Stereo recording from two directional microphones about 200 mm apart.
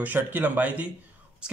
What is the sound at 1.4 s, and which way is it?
Whispering, 5° right (ahead or behind).